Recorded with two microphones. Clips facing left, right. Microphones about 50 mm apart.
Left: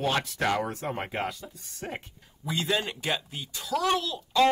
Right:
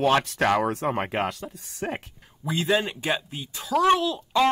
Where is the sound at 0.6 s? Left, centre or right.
Right.